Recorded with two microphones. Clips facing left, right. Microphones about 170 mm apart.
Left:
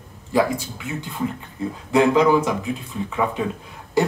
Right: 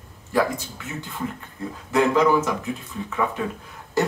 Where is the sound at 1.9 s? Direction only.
15° left (ahead or behind).